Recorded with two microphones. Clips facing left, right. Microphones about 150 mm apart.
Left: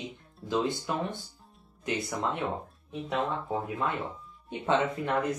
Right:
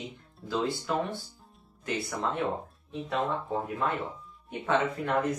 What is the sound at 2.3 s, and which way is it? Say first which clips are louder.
Speech: right 2 dB; centre (ahead or behind).